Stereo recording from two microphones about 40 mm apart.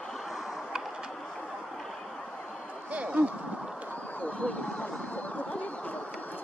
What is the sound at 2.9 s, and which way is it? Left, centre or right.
Speech, right.